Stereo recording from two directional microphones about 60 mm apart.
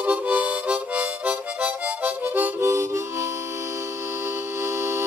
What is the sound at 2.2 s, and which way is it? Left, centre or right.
Harmonica, right.